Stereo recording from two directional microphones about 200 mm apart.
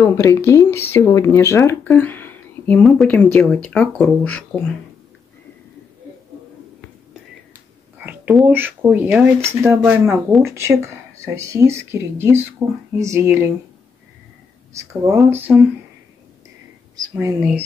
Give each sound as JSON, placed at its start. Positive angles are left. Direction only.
{"t": 0.0, "sound": "speech", "side_deg": 15}
{"t": 8.0, "sound": "speech", "side_deg": -10}
{"t": 14.7, "sound": "speech", "side_deg": -15}
{"t": 17.1, "sound": "speech", "side_deg": -15}